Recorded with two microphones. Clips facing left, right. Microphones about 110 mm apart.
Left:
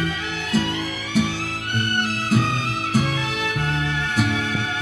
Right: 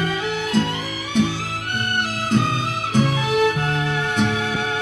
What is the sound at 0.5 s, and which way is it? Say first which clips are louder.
Music: left 3 dB; 5° left (ahead or behind).